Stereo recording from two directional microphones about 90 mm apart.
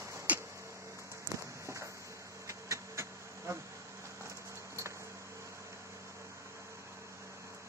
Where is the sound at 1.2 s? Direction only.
35° right (ahead or behind).